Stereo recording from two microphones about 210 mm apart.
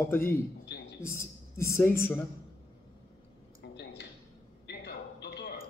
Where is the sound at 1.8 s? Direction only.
10° left (ahead or behind).